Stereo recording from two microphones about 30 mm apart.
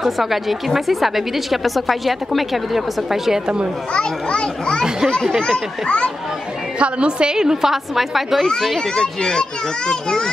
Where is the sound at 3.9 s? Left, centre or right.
Left.